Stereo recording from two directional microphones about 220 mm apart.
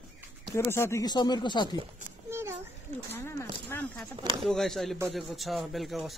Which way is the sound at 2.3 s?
10° right (ahead or behind).